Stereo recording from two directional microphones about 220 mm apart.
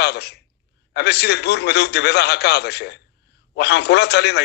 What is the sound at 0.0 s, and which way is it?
A man's voice, 50° left (ahead or behind).